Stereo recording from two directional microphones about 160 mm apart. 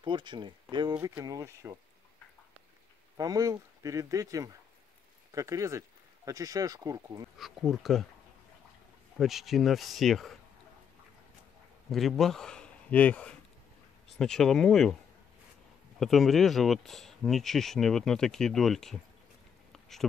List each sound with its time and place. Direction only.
0.0 s speech: 30° right (ahead or behind)
0.9 s speech: 15° right (ahead or behind)
3.2 s speech: 20° right (ahead or behind)
7.3 s speech: centre (ahead or behind)
9.2 s speech: centre (ahead or behind)
11.9 s speech: centre (ahead or behind)
16.0 s speech: centre (ahead or behind)
19.7 s a sound: centre (ahead or behind)